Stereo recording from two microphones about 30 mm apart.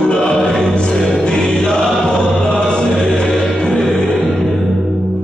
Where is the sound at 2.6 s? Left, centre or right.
Centre.